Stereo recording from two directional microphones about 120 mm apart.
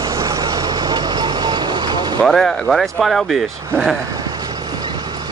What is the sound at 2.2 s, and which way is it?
Speech, centre (ahead or behind).